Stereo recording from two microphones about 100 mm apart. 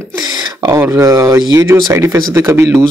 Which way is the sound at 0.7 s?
25° right (ahead or behind).